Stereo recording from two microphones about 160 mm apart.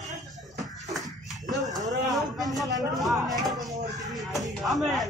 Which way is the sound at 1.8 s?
20° right (ahead or behind).